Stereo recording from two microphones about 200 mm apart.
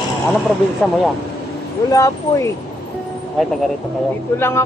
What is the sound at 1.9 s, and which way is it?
Speech, 15° left (ahead or behind).